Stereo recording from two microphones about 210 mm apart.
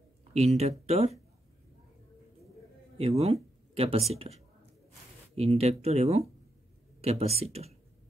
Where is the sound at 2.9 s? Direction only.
30° right (ahead or behind).